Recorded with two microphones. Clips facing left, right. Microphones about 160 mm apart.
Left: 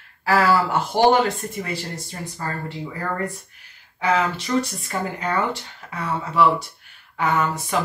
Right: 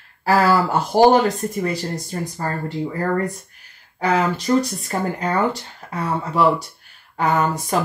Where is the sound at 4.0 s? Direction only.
40° right (ahead or behind).